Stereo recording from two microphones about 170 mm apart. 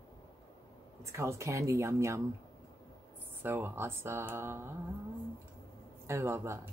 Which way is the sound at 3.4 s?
15° right (ahead or behind).